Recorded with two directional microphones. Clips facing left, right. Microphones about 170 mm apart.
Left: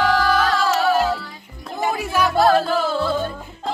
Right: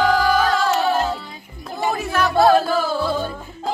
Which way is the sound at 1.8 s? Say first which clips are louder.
Even; 10° left (ahead or behind).